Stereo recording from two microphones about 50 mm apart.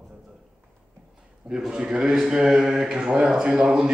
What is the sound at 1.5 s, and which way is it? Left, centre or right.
A man's voice, centre.